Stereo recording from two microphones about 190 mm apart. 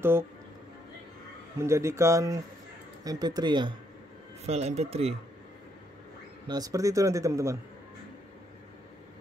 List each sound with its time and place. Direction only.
0.0 s speech: 10° right (ahead or behind)
1.6 s speech: 15° right (ahead or behind)
4.5 s speech: 35° right (ahead or behind)
6.4 s speech: 20° right (ahead or behind)